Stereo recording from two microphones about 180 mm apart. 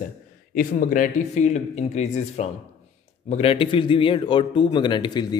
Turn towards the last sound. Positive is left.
turn(degrees=25)  # may be behind; listen again after turning